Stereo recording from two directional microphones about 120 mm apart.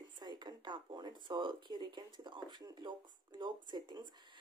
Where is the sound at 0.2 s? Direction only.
35° right (ahead or behind).